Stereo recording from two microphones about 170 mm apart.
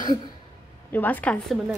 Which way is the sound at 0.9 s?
10° left (ahead or behind).